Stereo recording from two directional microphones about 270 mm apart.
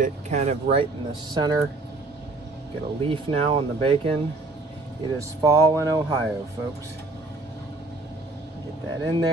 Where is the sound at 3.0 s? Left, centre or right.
Centre.